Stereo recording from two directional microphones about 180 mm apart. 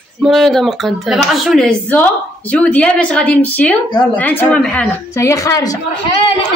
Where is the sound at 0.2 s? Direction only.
Centre (ahead or behind).